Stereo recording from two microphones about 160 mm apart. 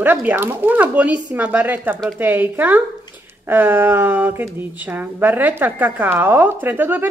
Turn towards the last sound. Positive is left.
turn(degrees=-10)  # may be behind; listen again after turning